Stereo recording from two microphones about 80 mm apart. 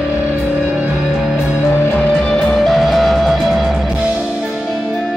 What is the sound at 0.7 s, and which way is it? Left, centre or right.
Music, centre.